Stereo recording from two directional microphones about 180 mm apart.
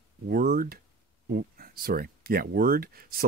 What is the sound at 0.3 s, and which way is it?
Speech, 55° right (ahead or behind).